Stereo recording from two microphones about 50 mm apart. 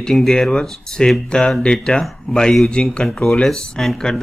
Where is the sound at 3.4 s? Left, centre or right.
Centre.